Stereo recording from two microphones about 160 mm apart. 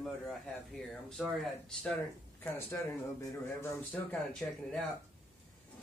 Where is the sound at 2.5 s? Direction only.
15° left (ahead or behind).